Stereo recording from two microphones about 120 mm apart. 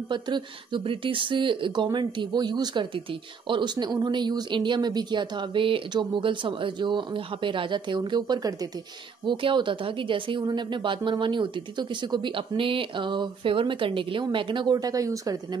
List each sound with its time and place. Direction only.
0.1 s a woman's voice: 40° right (ahead or behind)